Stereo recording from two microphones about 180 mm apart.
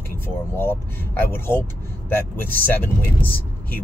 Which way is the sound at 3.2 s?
10° left (ahead or behind).